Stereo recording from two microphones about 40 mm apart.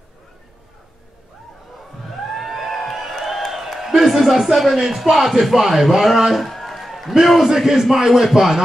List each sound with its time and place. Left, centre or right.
2.3 s music: centre
3.8 s a man's voice: centre